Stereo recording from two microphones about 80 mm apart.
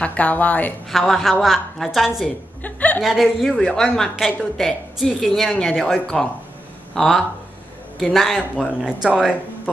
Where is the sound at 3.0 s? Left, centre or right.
Centre.